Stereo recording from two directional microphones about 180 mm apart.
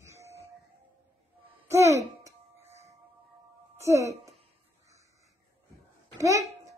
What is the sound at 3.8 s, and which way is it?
Speech, 15° right (ahead or behind).